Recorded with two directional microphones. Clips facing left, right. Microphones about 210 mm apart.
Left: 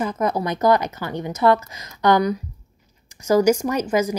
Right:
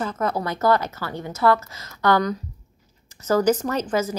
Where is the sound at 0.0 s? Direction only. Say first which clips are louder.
Left 3 dB; 15° left (ahead or behind).